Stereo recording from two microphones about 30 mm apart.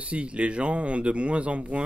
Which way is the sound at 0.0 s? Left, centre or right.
Right.